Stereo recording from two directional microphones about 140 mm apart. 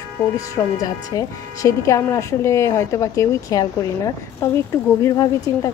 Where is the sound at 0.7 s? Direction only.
25° left (ahead or behind).